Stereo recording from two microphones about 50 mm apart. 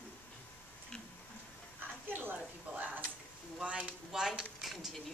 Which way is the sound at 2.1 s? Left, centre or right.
Right.